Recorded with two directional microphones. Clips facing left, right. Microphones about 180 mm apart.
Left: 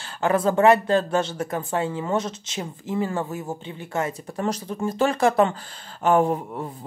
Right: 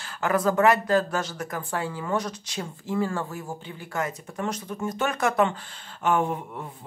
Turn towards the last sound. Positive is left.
turn(degrees=35)  # may be behind; listen again after turning